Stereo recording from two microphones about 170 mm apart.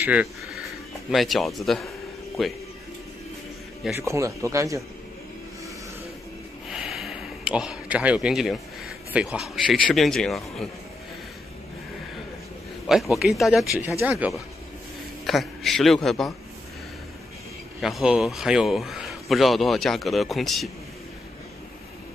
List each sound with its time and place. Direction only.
0.0 s a man's voice: 10° right (ahead or behind)
3.9 s speech: 15° right (ahead or behind)
6.7 s speech: centre (ahead or behind)
13.1 s a man's voice: centre (ahead or behind)
15.2 s a man's voice: centre (ahead or behind)
17.7 s a man's voice: centre (ahead or behind)